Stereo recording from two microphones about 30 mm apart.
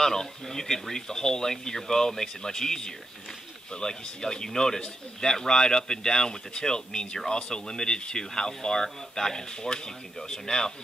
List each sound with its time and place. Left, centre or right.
0.0 s speech: centre